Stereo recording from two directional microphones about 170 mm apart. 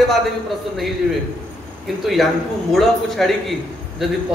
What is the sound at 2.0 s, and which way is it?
A man's voice, centre (ahead or behind).